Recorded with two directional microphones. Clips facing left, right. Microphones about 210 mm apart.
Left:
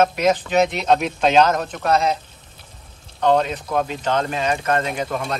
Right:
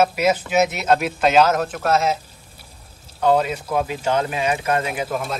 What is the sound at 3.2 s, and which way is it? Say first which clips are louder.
Speech: even; 5° right (ahead or behind).